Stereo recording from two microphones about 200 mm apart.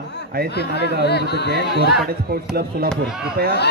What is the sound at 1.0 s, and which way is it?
Speech, 55° left (ahead or behind).